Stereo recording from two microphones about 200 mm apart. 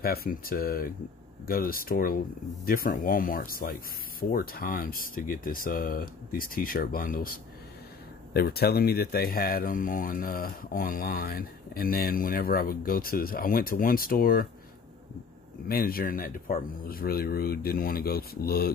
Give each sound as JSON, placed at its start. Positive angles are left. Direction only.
{"t": 0.0, "sound": "speech", "side_deg": 50}
{"t": 15.7, "sound": "speech", "side_deg": 50}